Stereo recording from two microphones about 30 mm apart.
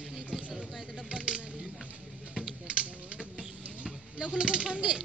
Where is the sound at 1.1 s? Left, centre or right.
Right.